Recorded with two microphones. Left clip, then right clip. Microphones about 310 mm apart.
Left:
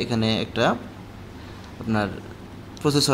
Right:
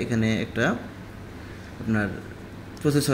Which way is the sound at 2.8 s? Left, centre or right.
Centre.